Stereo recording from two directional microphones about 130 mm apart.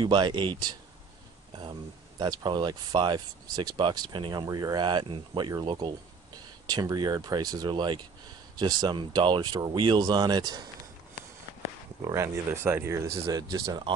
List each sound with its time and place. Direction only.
0.0 s speech: 35° right (ahead or behind)
1.5 s a sound: 30° right (ahead or behind)
2.1 s speech: 35° right (ahead or behind)
12.1 s speech: 20° right (ahead or behind)